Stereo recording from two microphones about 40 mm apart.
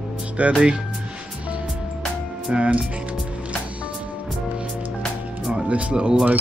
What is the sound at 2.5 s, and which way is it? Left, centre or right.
Speech, right.